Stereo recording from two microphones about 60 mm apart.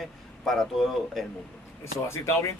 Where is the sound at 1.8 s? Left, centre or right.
Left.